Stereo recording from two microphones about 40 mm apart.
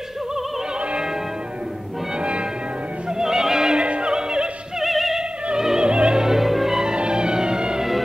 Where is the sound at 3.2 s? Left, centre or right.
Centre.